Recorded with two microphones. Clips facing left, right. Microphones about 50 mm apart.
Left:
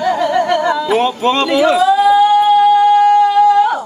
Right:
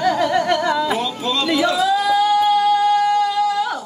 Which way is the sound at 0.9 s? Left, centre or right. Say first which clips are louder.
Left 9 dB; left.